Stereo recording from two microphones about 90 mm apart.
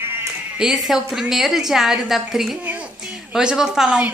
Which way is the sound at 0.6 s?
5° right (ahead or behind).